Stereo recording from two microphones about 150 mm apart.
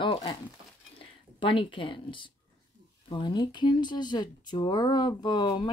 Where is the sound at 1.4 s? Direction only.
35° left (ahead or behind).